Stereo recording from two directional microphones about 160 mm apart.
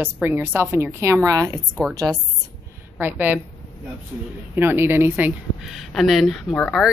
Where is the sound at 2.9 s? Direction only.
10° right (ahead or behind).